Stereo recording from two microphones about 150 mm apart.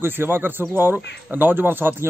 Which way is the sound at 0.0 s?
15° right (ahead or behind).